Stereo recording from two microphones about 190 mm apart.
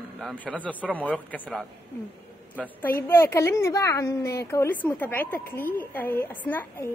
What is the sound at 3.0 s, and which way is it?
A woman's voice, 15° left (ahead or behind).